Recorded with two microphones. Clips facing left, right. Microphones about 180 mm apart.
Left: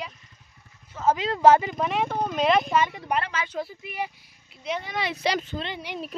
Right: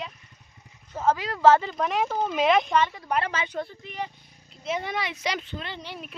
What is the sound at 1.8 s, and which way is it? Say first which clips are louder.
A woman's voice: even; centre (ahead or behind).